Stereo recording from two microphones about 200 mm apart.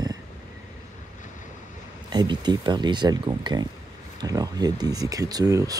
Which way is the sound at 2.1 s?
20° right (ahead or behind).